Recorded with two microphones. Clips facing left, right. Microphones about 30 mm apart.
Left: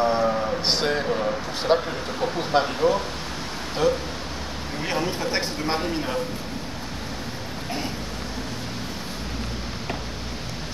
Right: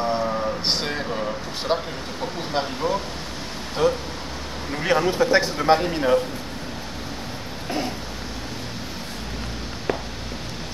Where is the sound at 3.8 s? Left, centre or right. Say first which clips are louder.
Right 1 dB; right.